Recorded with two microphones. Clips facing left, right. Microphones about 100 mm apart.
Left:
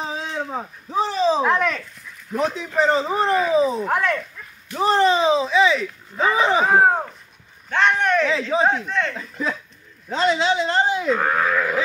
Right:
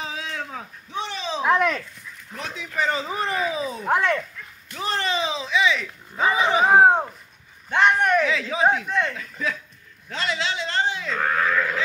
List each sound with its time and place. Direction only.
0.0 s a sound: 35° left (ahead or behind)
0.8 s a man's voice: 35° left (ahead or behind)
1.4 s speech: 15° right (ahead or behind)
2.4 s a man's voice: 35° left (ahead or behind)
3.9 s speech: 25° right (ahead or behind)
5.0 s a man's voice: 40° left (ahead or behind)
6.7 s speech: 20° right (ahead or behind)
8.3 s a man's voice: 30° left (ahead or behind)
8.6 s speech: 10° right (ahead or behind)
9.2 s a man's voice: 30° left (ahead or behind)
11.1 s speech: 20° left (ahead or behind)